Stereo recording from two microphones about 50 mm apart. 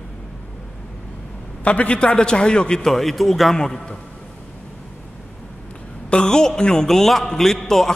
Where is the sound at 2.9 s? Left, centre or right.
Centre.